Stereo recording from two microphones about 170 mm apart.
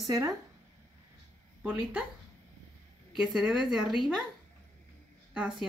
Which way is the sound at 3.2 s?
5° right (ahead or behind).